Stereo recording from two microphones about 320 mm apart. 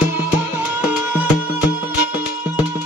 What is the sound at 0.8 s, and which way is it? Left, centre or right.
Music, centre.